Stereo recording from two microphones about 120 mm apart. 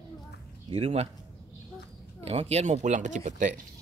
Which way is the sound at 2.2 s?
60° right (ahead or behind).